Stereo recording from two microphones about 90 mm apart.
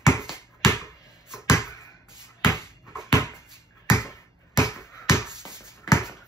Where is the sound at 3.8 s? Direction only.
30° left (ahead or behind).